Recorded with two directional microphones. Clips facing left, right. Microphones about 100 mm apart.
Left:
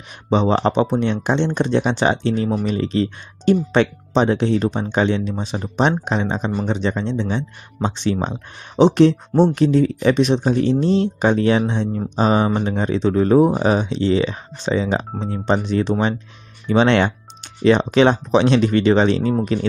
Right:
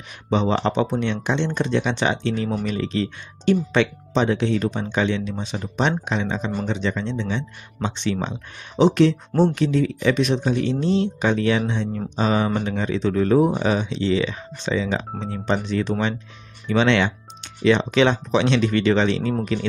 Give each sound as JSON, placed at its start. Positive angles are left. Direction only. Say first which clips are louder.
{"t": 0.3, "sound": "speech", "louder": "left 4 dB", "side_deg": 35}
{"t": 15.9, "sound": "speech", "louder": "left 4 dB", "side_deg": 20}
{"t": 16.6, "sound": "speech", "louder": "left 3 dB", "side_deg": 35}